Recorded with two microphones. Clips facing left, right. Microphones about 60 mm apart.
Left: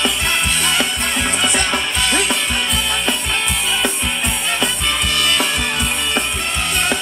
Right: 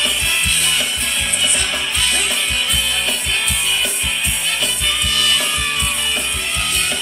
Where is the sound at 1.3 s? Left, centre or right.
Left.